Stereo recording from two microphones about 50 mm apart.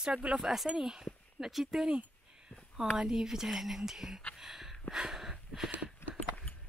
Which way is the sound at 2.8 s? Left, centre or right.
Centre.